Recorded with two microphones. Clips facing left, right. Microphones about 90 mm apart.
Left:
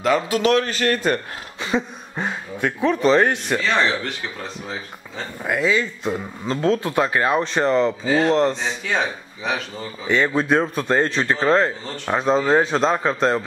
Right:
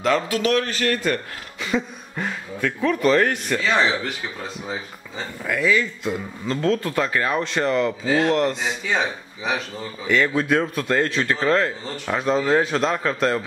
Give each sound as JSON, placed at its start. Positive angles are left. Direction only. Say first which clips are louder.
{"t": 0.3, "sound": "speech", "louder": "left 3 dB", "side_deg": 25}
{"t": 3.6, "sound": "speech", "louder": "right 1 dB", "side_deg": -5}
{"t": 5.4, "sound": "speech", "louder": "left 1 dB", "side_deg": 30}
{"t": 8.0, "sound": "speech", "louder": "left 1 dB", "side_deg": 0}
{"t": 8.3, "sound": "speech", "louder": "left 2 dB", "side_deg": 25}
{"t": 8.5, "sound": "speech", "louder": "even", "side_deg": -5}
{"t": 10.0, "sound": "speech", "louder": "left 1 dB", "side_deg": 25}